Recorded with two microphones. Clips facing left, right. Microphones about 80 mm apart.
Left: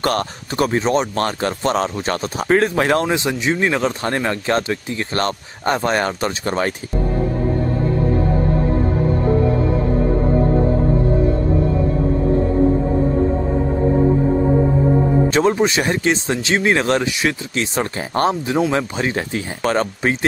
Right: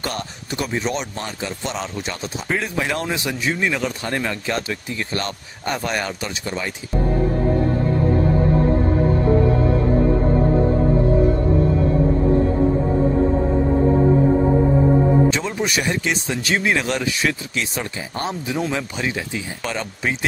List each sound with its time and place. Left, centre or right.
0.0 s speech: left
0.7 s speech: left
1.1 s speech: left
1.6 s speech: left
15.2 s speech: left
15.5 s speech: left
18.1 s speech: left